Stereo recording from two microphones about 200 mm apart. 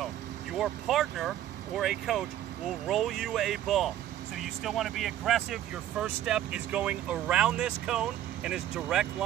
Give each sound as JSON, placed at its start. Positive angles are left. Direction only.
{"t": 0.0, "sound": "vehicle", "side_deg": 0}
{"t": 1.8, "sound": "speech", "side_deg": 0}